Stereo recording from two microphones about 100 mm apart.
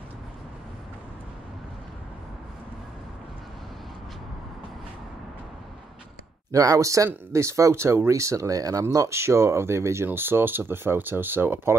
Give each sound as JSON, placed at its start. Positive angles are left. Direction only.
{"t": 6.5, "sound": "speech", "side_deg": -35}